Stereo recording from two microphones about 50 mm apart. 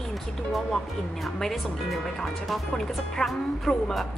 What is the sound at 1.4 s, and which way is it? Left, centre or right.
A woman's voice, centre.